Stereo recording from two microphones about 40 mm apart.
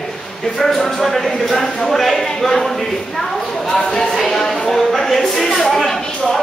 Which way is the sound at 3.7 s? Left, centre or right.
Centre.